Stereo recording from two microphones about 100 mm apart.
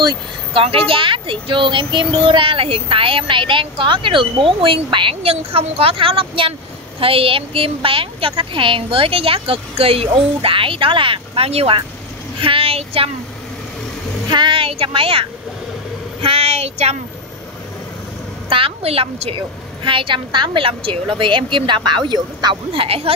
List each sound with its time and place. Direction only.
0.0 s a woman's voice: 60° right (ahead or behind); by 11.8 s 80° right
12.4 s speech: 65° right (ahead or behind); by 13.1 s 80° right
14.3 s a woman's voice: 55° right (ahead or behind)
16.2 s speech: 80° right
18.5 s a woman's voice: 75° right (ahead or behind)
19.8 s a woman's voice: 60° right (ahead or behind); by 23.1 s 75° right (ahead or behind)